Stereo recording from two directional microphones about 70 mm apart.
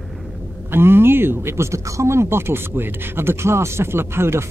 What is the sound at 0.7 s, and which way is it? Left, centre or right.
Speech, right.